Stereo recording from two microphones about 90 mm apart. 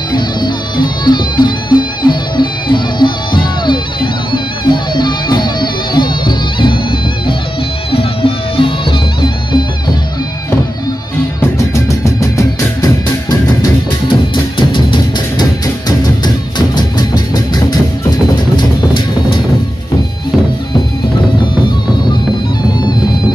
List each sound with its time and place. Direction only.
0.1 s music: 55° left (ahead or behind)
7.9 s music: 85° left
11.5 s music: 35° left (ahead or behind)
14.6 s music: 60° left (ahead or behind)
16.5 s music: 55° left (ahead or behind)
18.3 s music: 55° left (ahead or behind)